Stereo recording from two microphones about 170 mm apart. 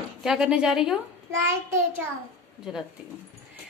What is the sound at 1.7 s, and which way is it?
Speech, 15° right (ahead or behind).